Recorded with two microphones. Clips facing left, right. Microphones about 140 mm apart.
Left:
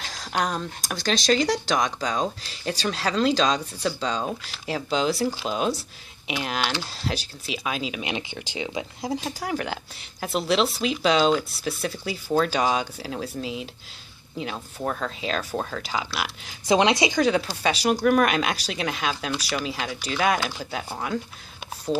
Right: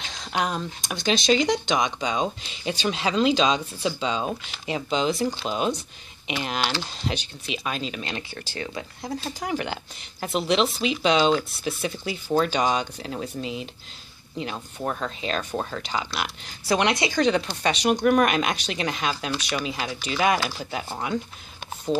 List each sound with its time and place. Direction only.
0.0 s a sound: centre (ahead or behind)
0.8 s speech: centre (ahead or behind)
8.0 s speech: 20° left (ahead or behind)
9.3 s speech: centre (ahead or behind)
16.6 s a woman's voice: 20° left (ahead or behind)
17.2 s speech: 5° left (ahead or behind)